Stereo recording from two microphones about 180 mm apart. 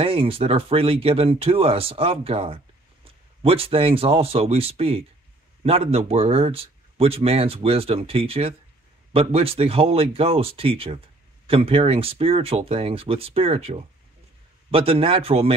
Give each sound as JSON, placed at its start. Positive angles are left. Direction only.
{"t": 0.0, "sound": "speech", "side_deg": -30}